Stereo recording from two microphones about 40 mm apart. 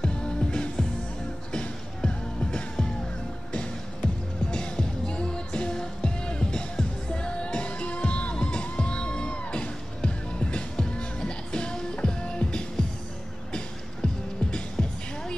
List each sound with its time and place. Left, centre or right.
0.0 s music: left
14.0 s music: centre